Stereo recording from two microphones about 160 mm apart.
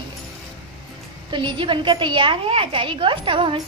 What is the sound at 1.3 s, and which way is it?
A woman's voice, 30° right (ahead or behind).